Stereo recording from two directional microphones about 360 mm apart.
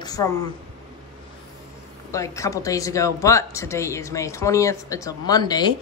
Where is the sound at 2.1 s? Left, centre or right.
Centre.